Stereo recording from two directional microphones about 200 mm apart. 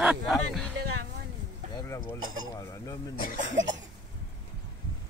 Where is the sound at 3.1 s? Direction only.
45° left (ahead or behind).